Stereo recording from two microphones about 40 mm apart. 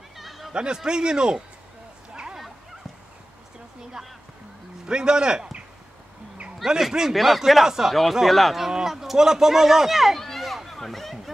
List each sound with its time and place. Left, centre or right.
0.2 s a sound: centre
0.5 s a man's voice: right
4.8 s a man's voice: right
6.6 s speech: centre
7.9 s speech: centre
8.6 s speech: centre
10.2 s a sound: centre